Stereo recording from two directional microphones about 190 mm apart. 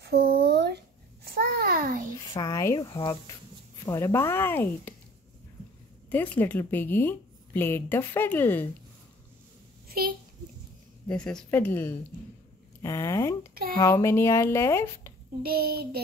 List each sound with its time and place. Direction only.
0.0 s a sound: 55° right (ahead or behind)
2.3 s speech: 15° left (ahead or behind)
6.0 s speech: 10° left (ahead or behind)
9.8 s a sound: 50° right (ahead or behind)
11.1 s speech: 5° left (ahead or behind)
15.4 s a child's voice: 55° right (ahead or behind)